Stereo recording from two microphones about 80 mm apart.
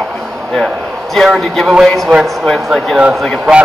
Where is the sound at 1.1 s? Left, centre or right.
Centre.